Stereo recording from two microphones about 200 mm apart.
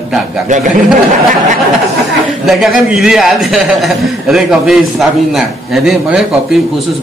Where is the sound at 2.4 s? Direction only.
Centre (ahead or behind).